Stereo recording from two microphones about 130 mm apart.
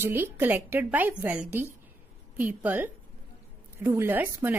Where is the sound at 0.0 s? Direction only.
15° right (ahead or behind).